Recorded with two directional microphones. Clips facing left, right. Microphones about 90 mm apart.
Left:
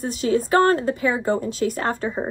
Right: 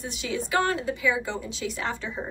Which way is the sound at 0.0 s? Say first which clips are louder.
Left 10 dB; 45° left (ahead or behind).